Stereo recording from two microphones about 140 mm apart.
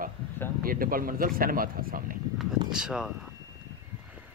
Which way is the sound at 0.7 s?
90° right.